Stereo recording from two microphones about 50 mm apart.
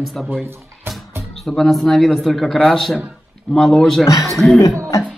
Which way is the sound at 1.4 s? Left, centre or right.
Centre.